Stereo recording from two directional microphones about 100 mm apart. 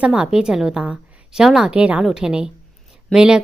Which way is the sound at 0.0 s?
10° right (ahead or behind).